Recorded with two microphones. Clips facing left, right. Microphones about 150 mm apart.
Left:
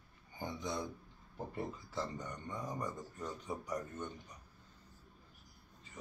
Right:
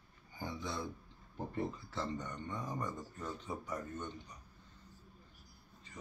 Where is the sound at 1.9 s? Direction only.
10° left (ahead or behind).